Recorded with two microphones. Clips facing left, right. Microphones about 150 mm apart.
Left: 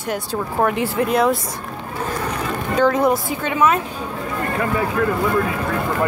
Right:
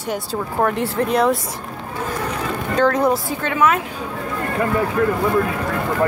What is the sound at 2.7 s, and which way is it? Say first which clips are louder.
Speech: even; 5° left (ahead or behind).